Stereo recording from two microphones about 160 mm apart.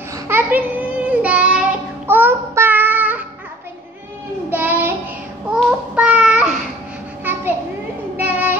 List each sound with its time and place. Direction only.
0.3 s child singing: 10° right (ahead or behind)
4.5 s child singing: 10° right (ahead or behind)
5.5 s a sound: 10° right (ahead or behind)
8.2 s child singing: 10° right (ahead or behind)